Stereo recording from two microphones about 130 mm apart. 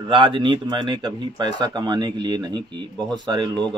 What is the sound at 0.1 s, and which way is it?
Speech, 40° right (ahead or behind).